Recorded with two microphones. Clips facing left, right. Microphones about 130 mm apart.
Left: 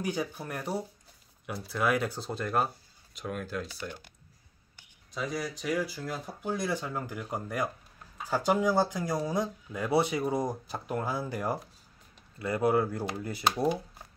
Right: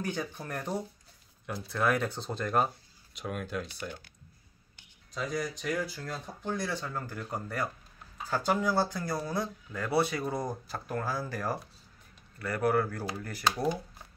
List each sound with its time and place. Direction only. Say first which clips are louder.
0.0 s speech: left 2 dB; 10° left (ahead or behind)
5.1 s speech: even; 5° left (ahead or behind); by 13.8 s 20° left (ahead or behind)